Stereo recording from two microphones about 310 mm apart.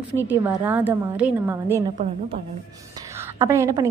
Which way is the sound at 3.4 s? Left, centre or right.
Centre.